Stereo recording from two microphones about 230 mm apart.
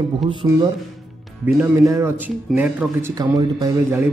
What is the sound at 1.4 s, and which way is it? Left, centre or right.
Speech, centre.